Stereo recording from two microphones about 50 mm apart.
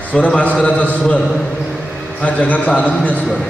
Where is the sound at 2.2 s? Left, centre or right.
Left.